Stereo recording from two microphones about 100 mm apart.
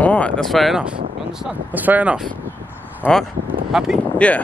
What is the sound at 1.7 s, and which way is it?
Speech, 15° right (ahead or behind).